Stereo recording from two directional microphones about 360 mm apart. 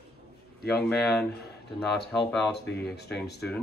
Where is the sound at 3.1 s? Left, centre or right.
Centre.